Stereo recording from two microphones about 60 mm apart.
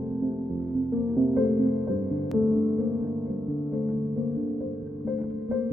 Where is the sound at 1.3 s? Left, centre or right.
Centre.